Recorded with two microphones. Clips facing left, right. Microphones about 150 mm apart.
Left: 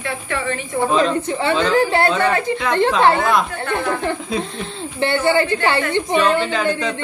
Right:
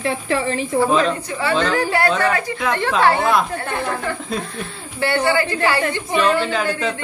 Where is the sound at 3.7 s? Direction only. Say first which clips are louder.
Left 3 dB; 25° left (ahead or behind).